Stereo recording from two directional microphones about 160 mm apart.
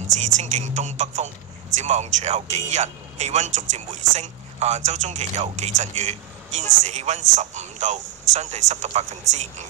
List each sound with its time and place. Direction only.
0.1 s speech: 50° right (ahead or behind)